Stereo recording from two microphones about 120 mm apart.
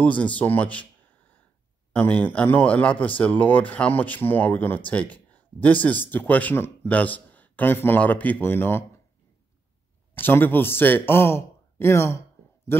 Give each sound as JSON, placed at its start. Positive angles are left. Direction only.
{"t": 0.0, "sound": "speech", "side_deg": 10}
{"t": 1.9, "sound": "speech", "side_deg": 10}
{"t": 10.1, "sound": "speech", "side_deg": 15}